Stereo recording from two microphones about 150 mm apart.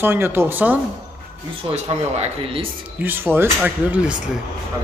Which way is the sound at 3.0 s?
15° right (ahead or behind).